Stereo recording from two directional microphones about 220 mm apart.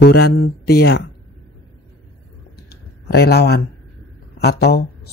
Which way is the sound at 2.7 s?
45° left (ahead or behind).